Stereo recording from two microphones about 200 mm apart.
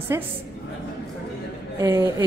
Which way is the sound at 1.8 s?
15° right (ahead or behind).